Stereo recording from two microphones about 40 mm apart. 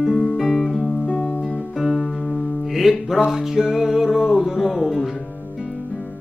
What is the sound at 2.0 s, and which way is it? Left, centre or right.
Music, centre.